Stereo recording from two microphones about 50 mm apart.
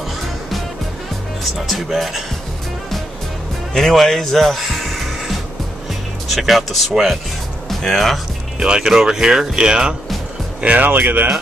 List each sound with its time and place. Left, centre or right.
1.4 s speech: centre
3.7 s speech: centre
6.2 s speech: centre
8.5 s speech: centre
10.6 s speech: right